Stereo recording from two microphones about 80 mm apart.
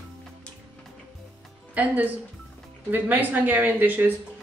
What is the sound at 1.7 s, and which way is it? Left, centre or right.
A woman's voice, centre.